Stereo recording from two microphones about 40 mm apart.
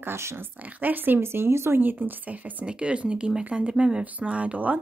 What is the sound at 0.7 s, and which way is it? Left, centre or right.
Speech, right.